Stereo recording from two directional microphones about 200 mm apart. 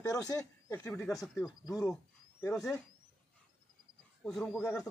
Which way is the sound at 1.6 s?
15° left (ahead or behind).